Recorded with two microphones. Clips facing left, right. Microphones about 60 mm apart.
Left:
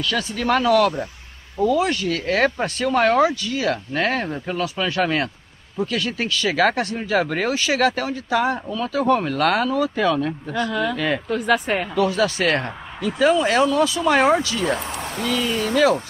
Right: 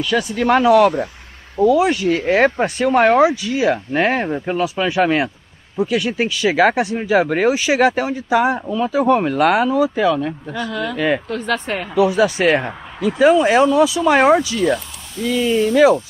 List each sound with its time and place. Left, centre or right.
0.0 s speech: centre
11.9 s speech: centre
15.2 s speech: left
15.7 s speech: centre